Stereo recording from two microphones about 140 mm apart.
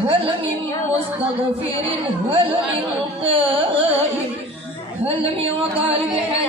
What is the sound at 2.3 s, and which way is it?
Speech, 45° right (ahead or behind).